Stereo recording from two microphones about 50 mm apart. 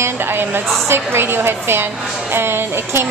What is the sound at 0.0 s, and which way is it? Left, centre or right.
A woman's voice, right.